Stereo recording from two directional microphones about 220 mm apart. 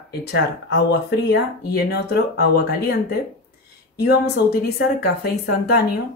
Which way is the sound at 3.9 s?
45° left (ahead or behind).